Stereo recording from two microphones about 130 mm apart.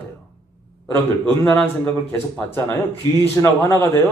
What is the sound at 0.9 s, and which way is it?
A man's voice, 20° left (ahead or behind).